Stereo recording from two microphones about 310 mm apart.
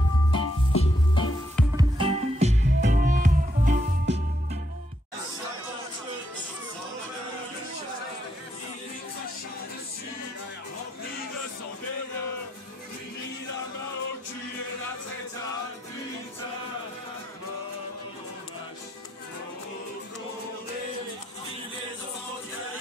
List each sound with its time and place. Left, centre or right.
0.3 s music: centre
1.8 s music: centre